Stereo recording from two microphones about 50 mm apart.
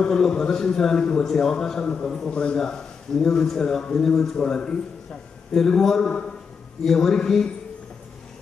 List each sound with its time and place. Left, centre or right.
0.0 s a man's voice: centre
2.3 s a man's voice: left
2.6 s a man's voice: centre